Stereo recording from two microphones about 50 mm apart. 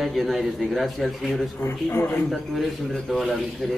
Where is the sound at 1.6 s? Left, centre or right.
Left.